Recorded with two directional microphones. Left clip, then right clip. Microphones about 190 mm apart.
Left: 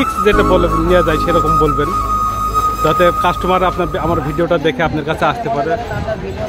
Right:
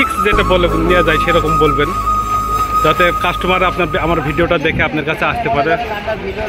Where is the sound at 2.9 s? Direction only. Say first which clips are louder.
Left 1 dB; 15° left (ahead or behind).